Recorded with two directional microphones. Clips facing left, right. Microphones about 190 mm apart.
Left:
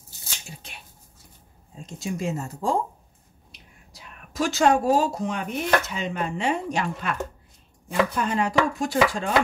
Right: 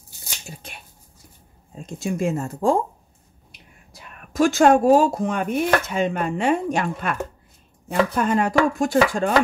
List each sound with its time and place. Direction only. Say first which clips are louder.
0.5 s a sound: right 6 dB; 50° right (ahead or behind)
1.8 s speech: right 5 dB; 55° right (ahead or behind)
3.9 s speech: right 7 dB; 55° right (ahead or behind)